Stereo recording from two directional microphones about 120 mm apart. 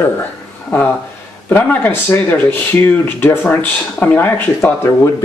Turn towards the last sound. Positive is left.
turn(degrees=25)  # may be behind; listen again after turning